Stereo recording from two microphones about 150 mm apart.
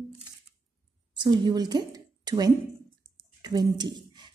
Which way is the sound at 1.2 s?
30° right (ahead or behind).